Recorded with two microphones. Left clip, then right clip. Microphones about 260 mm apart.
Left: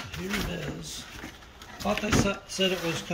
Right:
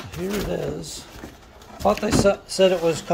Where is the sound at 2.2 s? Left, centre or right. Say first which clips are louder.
Right 10 dB; centre.